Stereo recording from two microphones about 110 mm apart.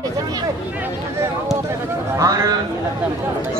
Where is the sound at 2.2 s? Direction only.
30° right (ahead or behind).